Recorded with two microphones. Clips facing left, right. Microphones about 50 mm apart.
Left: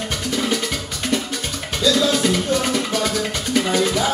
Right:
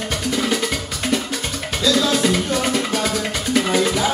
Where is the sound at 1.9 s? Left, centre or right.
Centre.